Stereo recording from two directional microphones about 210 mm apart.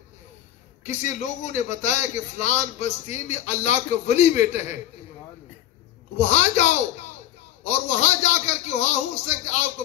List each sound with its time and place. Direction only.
0.8 s a man's voice: 35° left (ahead or behind)
6.1 s a man's voice: 30° left (ahead or behind)